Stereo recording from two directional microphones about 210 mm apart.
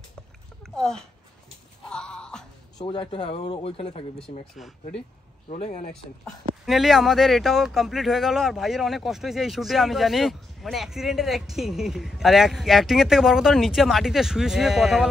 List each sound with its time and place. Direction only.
0.7 s a child's voice: centre (ahead or behind)
1.9 s a sound: 5° left (ahead or behind)
2.8 s speech: 25° left (ahead or behind)
5.5 s speech: 35° left (ahead or behind)
6.6 s speech: centre (ahead or behind)